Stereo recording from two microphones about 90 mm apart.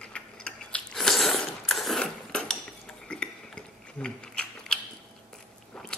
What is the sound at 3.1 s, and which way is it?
Gears, 10° left (ahead or behind).